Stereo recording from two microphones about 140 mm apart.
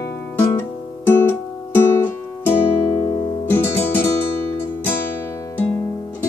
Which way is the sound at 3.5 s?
15° left (ahead or behind).